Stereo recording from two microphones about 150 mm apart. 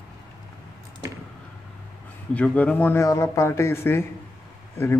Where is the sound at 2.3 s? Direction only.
10° left (ahead or behind).